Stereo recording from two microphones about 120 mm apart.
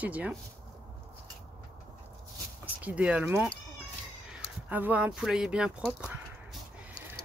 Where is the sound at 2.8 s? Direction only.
10° right (ahead or behind).